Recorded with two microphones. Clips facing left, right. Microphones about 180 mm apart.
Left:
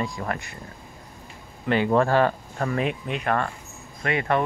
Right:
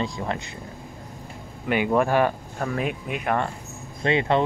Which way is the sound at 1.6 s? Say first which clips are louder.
Left 1 dB; 10° right (ahead or behind).